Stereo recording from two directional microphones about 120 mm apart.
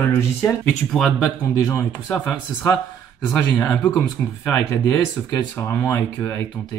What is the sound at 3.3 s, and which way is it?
Speech, 15° left (ahead or behind).